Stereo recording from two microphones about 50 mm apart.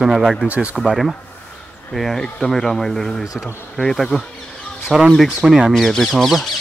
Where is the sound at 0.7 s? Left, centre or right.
Centre.